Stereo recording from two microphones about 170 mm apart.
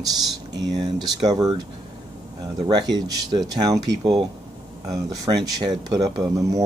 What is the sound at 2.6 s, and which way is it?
Speech, 25° right (ahead or behind).